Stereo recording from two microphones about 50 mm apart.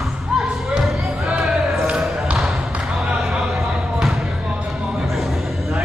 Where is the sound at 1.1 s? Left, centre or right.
Centre.